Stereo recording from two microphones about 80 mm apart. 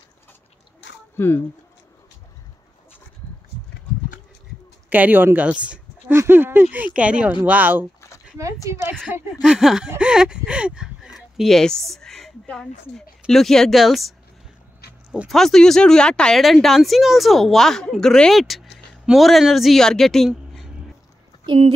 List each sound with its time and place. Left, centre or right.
1.1 s speech: left
4.8 s speech: right
6.1 s speech: right
9.4 s speech: centre
15.2 s speech: centre